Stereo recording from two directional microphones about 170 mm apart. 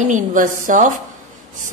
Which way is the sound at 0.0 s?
50° right (ahead or behind).